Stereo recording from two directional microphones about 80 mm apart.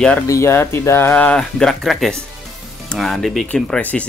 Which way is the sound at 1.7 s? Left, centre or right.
Centre.